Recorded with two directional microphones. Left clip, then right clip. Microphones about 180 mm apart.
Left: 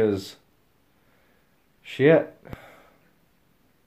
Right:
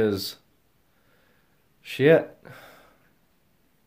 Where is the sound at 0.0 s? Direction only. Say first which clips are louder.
Left 1 dB; 20° right (ahead or behind).